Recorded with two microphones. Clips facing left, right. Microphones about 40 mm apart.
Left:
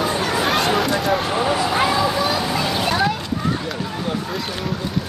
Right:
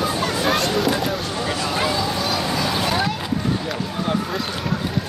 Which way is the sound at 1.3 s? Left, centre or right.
Left.